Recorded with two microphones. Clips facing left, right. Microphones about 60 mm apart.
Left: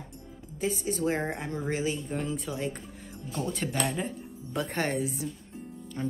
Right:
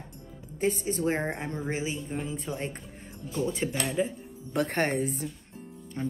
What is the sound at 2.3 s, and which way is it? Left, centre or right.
A woman's voice, right.